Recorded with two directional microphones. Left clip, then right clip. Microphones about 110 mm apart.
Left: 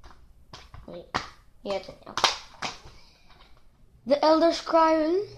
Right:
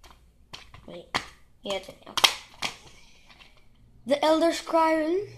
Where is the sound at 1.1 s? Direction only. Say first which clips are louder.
Right 1 dB; 30° right (ahead or behind).